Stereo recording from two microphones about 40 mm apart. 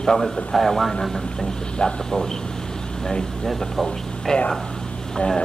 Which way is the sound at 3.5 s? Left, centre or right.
Centre.